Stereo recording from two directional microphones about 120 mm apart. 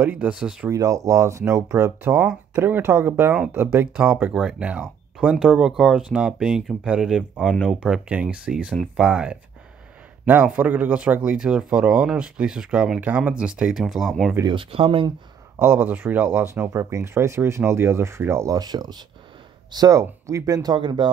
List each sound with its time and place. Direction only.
0.0 s speech: 10° right (ahead or behind)
0.7 s speech: 30° right (ahead or behind); by 14.3 s centre (ahead or behind)
14.4 s speech: 45° right (ahead or behind)
15.6 s speech: 15° right (ahead or behind); by 21.1 s 40° right (ahead or behind)